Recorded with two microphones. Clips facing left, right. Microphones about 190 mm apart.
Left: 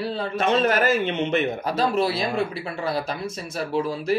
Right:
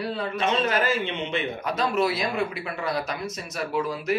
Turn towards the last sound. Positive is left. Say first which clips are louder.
# left 2 dB
turn(degrees=30)  # may be behind; listen again after turning